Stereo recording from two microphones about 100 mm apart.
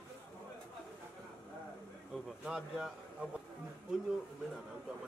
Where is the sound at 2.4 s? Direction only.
5° right (ahead or behind).